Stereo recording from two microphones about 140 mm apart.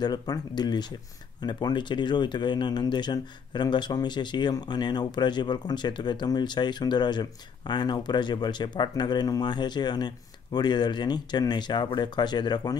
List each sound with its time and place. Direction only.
0.0 s speech: 30° left (ahead or behind)